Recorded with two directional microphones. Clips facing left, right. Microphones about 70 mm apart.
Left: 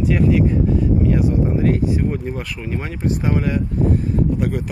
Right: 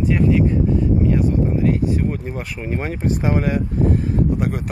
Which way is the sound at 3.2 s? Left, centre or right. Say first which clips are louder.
Right 1 dB; centre.